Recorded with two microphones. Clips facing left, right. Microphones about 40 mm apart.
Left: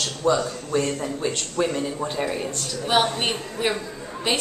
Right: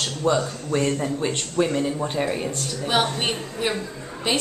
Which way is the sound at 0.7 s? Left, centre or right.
Centre.